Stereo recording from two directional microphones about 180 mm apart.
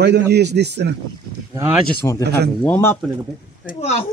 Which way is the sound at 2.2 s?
65° right (ahead or behind).